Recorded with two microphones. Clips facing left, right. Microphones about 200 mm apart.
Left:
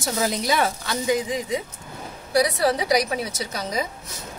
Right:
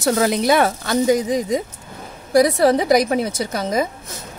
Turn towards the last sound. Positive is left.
turn(degrees=-50)  # may be behind; listen again after turning